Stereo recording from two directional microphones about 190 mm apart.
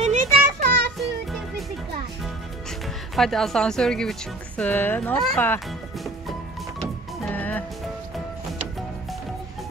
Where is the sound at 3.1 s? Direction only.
Centre (ahead or behind).